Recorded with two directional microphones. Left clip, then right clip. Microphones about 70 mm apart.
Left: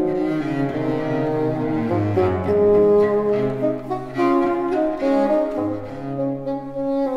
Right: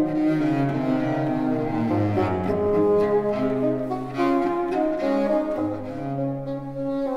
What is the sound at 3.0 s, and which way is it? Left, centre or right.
Music, right.